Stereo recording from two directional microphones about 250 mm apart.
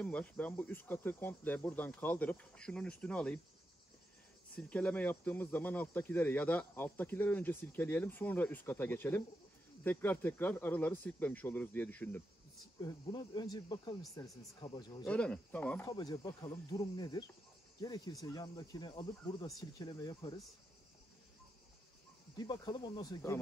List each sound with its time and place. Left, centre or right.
0.0 s speech: centre
4.6 s speech: centre
15.0 s speech: centre
22.4 s speech: centre